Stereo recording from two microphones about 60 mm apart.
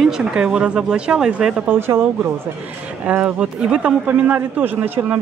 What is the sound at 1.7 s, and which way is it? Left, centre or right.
Speech, right.